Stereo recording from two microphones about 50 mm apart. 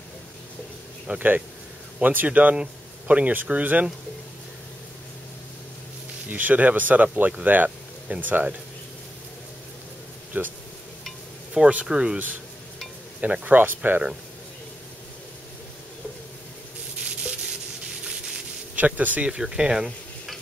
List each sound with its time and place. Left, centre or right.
1.1 s speech: right
2.5 s speech: right
6.2 s speech: right
10.3 s speech: right
11.6 s speech: centre
13.2 s speech: right
17.0 s rub: centre
18.8 s speech: right
19.2 s speech: centre